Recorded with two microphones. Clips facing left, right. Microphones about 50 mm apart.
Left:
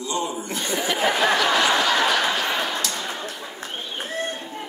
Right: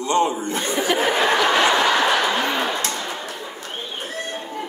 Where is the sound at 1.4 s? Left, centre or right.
Right.